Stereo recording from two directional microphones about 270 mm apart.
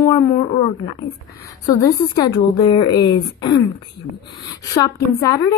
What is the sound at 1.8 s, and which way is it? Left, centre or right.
Speech, centre.